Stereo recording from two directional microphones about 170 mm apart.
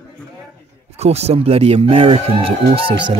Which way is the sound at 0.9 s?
40° right (ahead or behind).